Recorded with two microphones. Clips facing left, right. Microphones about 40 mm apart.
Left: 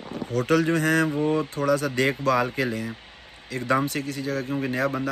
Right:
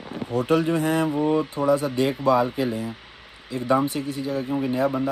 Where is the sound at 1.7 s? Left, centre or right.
Left.